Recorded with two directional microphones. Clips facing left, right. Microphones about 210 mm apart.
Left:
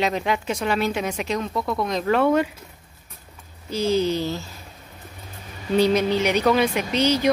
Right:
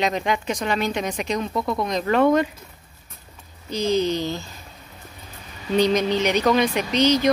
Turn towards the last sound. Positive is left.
turn(degrees=10)  # may be behind; listen again after turning